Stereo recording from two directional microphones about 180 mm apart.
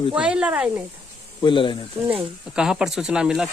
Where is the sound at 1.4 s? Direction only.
25° left (ahead or behind).